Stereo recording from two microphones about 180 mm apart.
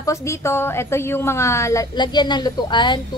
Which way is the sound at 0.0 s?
15° left (ahead or behind).